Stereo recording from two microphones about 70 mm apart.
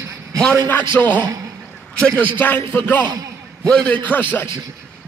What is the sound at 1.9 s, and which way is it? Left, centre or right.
A man's voice, centre.